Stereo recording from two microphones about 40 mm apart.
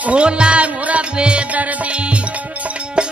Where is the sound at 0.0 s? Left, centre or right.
Right.